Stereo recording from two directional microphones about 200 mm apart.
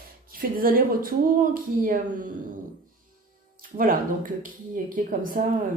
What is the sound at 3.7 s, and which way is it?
A woman's voice, 45° right (ahead or behind).